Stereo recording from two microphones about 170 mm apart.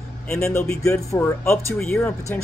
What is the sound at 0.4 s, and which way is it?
Speech, 15° left (ahead or behind).